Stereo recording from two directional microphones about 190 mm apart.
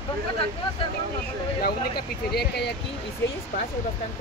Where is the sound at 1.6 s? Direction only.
55° left (ahead or behind).